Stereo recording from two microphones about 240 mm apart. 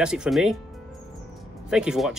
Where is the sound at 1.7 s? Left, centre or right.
Centre.